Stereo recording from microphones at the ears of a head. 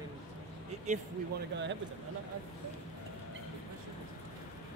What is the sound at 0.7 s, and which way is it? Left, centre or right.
Speech, right.